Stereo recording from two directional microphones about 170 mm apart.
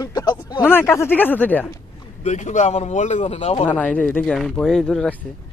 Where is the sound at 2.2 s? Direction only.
45° left (ahead or behind).